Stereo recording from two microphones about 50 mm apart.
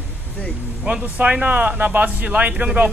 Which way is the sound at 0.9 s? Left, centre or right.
Right.